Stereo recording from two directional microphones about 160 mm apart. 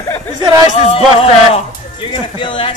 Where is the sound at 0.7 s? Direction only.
40° left (ahead or behind).